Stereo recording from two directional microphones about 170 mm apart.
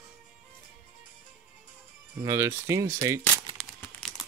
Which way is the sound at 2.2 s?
15° right (ahead or behind).